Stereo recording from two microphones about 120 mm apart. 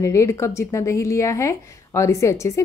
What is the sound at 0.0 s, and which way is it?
A woman's voice, 25° left (ahead or behind).